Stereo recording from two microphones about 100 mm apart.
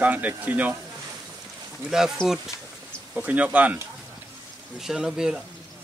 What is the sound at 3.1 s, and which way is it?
Speech, 15° right (ahead or behind).